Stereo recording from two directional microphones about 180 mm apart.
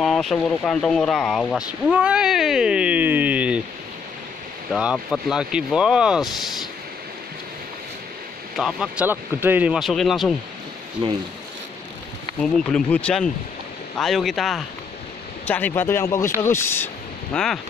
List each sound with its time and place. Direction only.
0.0 s speech: centre (ahead or behind)
4.6 s speech: centre (ahead or behind)
8.5 s speech: centre (ahead or behind)
11.0 s speech: 25° right (ahead or behind)
12.5 s speech: 5° left (ahead or behind)